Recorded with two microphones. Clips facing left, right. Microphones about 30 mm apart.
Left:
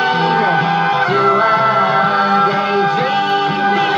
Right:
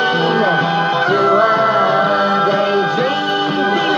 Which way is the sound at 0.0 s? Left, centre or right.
Centre.